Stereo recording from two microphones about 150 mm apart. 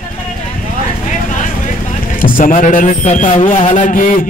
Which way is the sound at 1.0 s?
55° left (ahead or behind).